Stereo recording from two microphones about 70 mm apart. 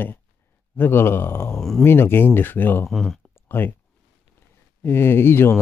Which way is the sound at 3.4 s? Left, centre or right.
Left.